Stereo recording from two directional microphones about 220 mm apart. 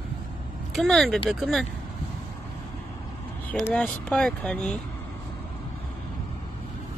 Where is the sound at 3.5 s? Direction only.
5° left (ahead or behind).